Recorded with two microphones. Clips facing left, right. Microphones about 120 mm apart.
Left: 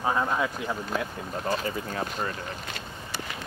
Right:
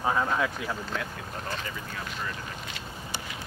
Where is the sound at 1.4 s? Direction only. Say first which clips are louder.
Left 9 dB; 40° left (ahead or behind).